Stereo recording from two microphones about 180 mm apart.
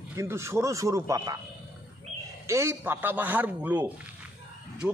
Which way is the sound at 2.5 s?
15° right (ahead or behind).